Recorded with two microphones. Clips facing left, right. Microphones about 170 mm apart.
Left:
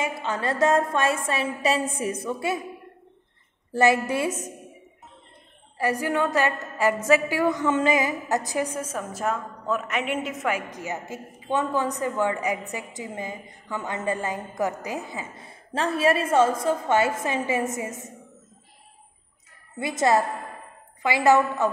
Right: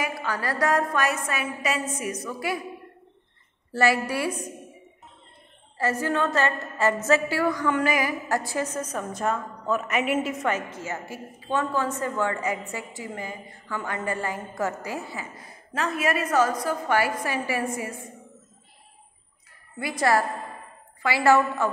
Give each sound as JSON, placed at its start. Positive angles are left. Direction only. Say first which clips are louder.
{"t": 0.0, "sound": "a woman's voice", "louder": "left 2 dB", "side_deg": 25}
{"t": 3.7, "sound": "a woman's voice", "louder": "left 2 dB", "side_deg": 20}
{"t": 5.8, "sound": "a woman's voice", "louder": "left 1 dB", "side_deg": 15}
{"t": 10.7, "sound": "a woman's voice", "louder": "left 1 dB", "side_deg": 15}
{"t": 19.8, "sound": "a woman's voice", "louder": "left 2 dB", "side_deg": 20}